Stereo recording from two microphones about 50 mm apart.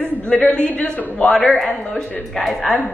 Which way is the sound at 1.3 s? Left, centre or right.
Centre.